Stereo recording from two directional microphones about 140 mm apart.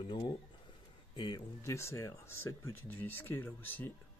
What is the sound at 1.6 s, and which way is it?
Speech, 20° left (ahead or behind).